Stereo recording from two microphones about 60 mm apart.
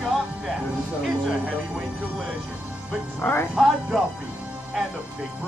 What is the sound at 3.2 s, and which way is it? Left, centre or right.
Speech, left.